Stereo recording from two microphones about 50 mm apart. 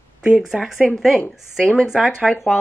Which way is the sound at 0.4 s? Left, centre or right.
Centre.